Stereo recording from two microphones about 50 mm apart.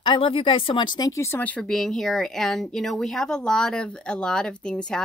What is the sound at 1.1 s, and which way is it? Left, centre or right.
Speech, left.